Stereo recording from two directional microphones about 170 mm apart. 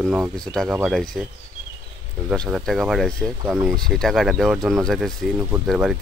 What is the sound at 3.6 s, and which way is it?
Speech, 5° left (ahead or behind).